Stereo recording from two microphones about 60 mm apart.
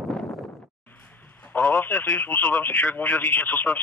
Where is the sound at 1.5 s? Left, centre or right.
Left.